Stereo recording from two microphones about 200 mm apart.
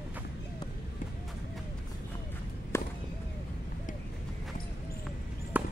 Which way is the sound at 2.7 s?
15° left (ahead or behind).